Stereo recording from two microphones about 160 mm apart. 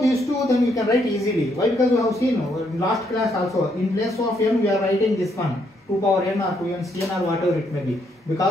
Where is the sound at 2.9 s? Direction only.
Centre (ahead or behind).